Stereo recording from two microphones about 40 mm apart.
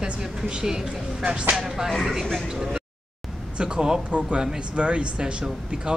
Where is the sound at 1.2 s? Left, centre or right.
Right.